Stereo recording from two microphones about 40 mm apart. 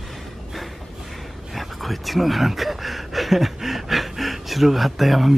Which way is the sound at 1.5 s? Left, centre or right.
Centre.